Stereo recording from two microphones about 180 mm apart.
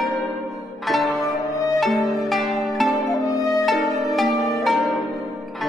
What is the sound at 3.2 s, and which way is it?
Music, 20° left (ahead or behind).